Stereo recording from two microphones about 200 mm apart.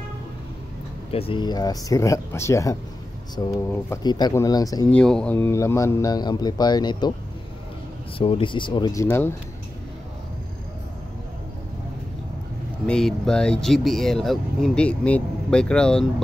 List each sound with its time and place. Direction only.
1.1 s a man's voice: 25° left (ahead or behind)
4.9 s a man's voice: 5° left (ahead or behind); by 7.2 s 20° left (ahead or behind)
8.2 s speech: 25° left (ahead or behind)
12.8 s speech: 5° left (ahead or behind)